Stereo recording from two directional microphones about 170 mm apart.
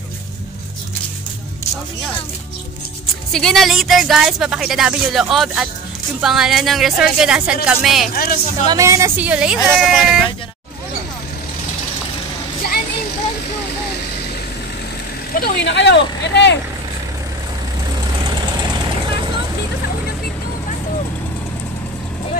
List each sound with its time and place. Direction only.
3.3 s speech: 5° left (ahead or behind)
8.1 s speech: 60° left (ahead or behind)
8.6 s speech: 20° right (ahead or behind)
15.3 s speech: 75° left (ahead or behind)